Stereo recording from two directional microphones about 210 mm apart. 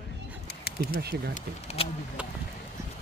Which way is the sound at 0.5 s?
50° left (ahead or behind).